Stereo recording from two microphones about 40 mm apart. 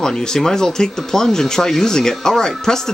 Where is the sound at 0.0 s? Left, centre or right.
Centre.